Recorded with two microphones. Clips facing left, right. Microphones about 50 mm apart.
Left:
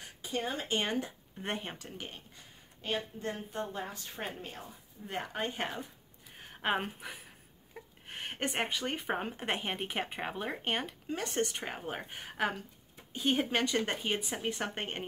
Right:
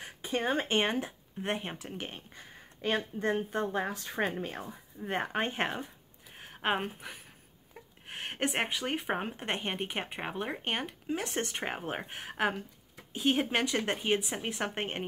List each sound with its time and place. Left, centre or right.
0.3 s speech: right
0.9 s speech: centre
1.8 s speech: right
3.2 s speech: right
4.0 s speech: right
4.6 s speech: right
6.3 s a sound: centre
8.1 s speech: centre
9.3 s speech: centre
11.1 s speech: centre
11.5 s speech: right
12.1 s speech: centre